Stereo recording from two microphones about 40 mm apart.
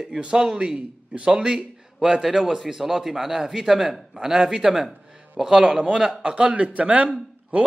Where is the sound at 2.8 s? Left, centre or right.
Centre; by 7.1 s right.